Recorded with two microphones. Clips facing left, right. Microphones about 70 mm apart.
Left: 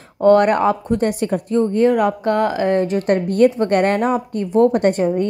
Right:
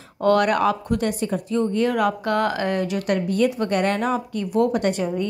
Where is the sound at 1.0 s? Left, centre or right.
Left.